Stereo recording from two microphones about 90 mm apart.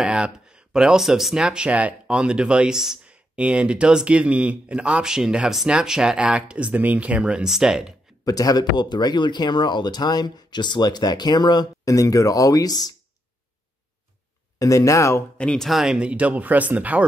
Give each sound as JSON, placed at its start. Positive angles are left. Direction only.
{"t": 0.0, "sound": "speech", "side_deg": -10}
{"t": 8.3, "sound": "speech", "side_deg": 45}
{"t": 11.8, "sound": "speech", "side_deg": 40}
{"t": 14.6, "sound": "speech", "side_deg": 35}
{"t": 15.3, "sound": "speech", "side_deg": 10}